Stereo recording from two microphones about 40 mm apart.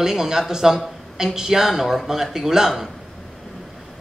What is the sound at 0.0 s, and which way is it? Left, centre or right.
A woman's voice, centre.